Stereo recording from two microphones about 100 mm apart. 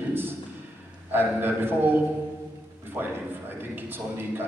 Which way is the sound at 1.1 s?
20° right (ahead or behind).